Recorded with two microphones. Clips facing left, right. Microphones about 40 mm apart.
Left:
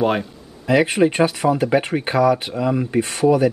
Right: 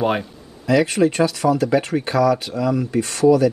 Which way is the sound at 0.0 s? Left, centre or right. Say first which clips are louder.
Left 1 dB; centre.